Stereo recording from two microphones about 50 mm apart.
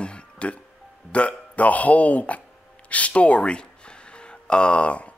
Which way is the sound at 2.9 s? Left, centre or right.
Left.